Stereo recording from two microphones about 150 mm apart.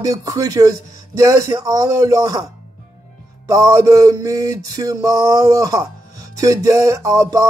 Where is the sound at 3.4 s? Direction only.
20° right (ahead or behind).